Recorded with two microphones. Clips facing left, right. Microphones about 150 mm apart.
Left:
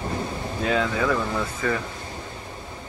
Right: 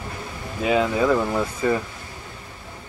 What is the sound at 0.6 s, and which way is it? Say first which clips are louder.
Speech: right 3 dB; 10° right (ahead or behind).